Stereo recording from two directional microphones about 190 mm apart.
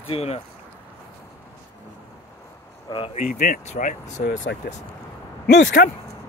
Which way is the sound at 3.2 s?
45° left (ahead or behind).